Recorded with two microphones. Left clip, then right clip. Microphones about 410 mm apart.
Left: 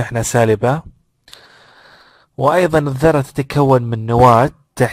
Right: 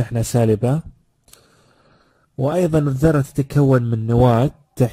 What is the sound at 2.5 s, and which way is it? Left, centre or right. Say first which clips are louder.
Speech: left 3 dB; left.